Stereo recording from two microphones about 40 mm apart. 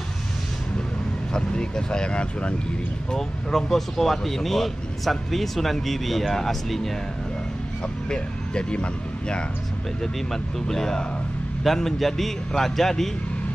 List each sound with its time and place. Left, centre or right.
1.3 s speech: left
3.2 s speech: centre
8.1 s speech: left
10.3 s a man's voice: centre